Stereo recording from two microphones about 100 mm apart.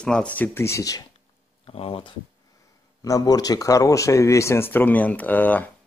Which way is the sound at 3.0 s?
40° left (ahead or behind).